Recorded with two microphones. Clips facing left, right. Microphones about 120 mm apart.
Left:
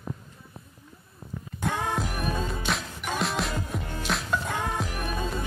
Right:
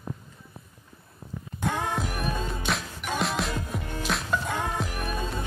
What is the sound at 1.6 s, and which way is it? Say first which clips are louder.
Music: even; centre (ahead or behind).